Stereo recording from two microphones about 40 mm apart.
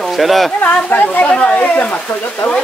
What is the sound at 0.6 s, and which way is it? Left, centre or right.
Speech, left.